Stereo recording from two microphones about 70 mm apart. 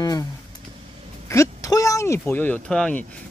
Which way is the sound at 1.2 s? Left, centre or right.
Left.